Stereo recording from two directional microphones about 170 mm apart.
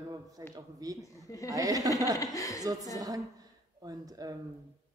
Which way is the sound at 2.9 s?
20° right (ahead or behind).